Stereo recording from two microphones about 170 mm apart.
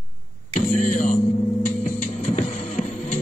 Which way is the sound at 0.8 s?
50° left (ahead or behind).